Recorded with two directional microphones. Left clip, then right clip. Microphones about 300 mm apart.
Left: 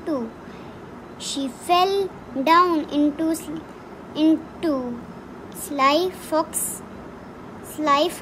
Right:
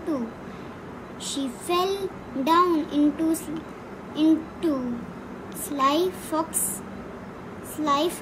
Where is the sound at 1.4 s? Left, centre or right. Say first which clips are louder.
Left 6 dB; centre.